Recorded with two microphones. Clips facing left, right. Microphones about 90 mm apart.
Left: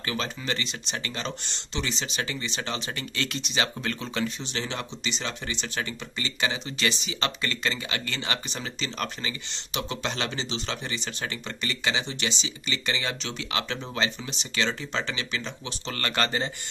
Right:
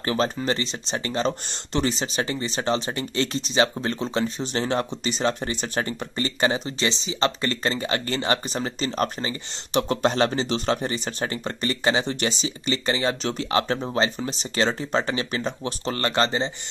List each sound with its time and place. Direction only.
0.0 s speech: 40° right (ahead or behind)